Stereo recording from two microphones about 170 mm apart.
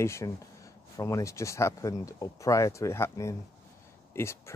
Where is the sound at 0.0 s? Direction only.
15° left (ahead or behind).